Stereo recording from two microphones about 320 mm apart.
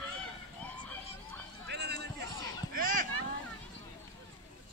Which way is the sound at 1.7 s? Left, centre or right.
Right.